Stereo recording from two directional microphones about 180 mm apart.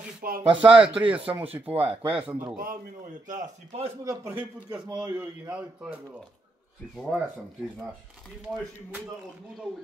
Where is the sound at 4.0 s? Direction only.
15° right (ahead or behind).